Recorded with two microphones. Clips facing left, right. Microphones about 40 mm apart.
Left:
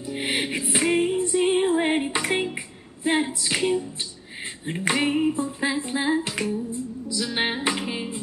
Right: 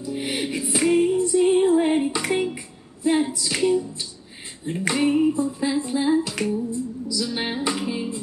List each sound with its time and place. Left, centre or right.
0.0 s music: left
2.4 s a sound: left
3.5 s music: left
4.6 s a sound: left
6.3 s humming: centre
7.1 s music: left